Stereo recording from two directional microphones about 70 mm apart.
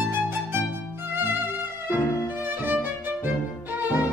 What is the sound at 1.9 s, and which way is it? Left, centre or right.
Violin, left.